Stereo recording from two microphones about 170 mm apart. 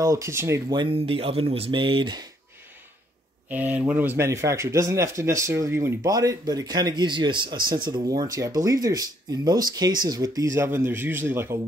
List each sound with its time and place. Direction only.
0.0 s speech: 20° right (ahead or behind)
0.7 s speech: 35° right (ahead or behind)
3.4 s speech: 10° right (ahead or behind)